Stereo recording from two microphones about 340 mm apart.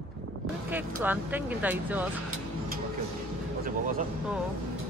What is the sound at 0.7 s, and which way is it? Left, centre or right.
Speech, centre.